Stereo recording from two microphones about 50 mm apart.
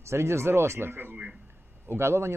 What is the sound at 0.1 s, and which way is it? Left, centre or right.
Speech, right.